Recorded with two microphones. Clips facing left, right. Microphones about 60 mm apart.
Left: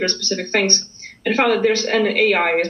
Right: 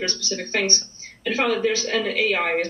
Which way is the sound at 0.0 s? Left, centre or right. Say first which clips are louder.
Left 6 dB; left.